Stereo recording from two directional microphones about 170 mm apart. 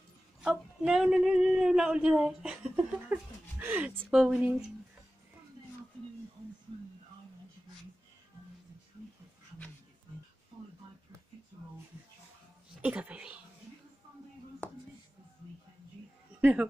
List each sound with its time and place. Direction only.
0.4 s speech: 5° right (ahead or behind)
12.8 s speech: 5° right (ahead or behind)
16.3 s a sound: 10° right (ahead or behind)